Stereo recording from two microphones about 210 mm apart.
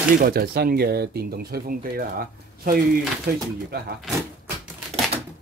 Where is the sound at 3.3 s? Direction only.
45° right (ahead or behind).